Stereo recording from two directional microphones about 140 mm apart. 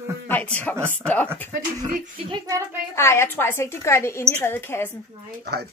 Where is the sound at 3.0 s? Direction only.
20° left (ahead or behind).